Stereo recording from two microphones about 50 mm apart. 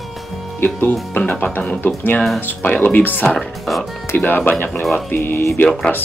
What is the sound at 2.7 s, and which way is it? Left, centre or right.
Speech, left.